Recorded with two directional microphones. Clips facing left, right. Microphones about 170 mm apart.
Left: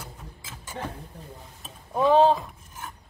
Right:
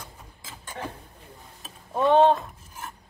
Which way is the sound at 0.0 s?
10° left (ahead or behind).